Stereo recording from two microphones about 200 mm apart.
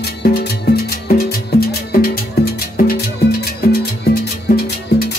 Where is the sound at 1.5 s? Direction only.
50° left (ahead or behind).